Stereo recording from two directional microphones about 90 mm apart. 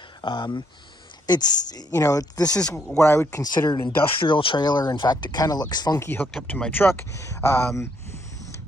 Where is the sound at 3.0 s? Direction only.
35° left (ahead or behind).